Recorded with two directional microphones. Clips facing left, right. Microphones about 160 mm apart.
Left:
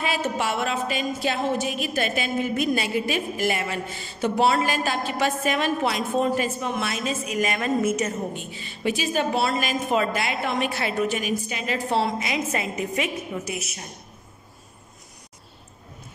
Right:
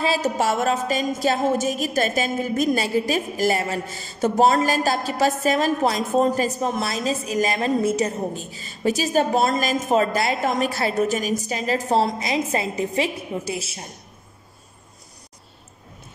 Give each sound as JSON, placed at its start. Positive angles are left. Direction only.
{"t": 0.0, "sound": "a woman's voice", "side_deg": -35}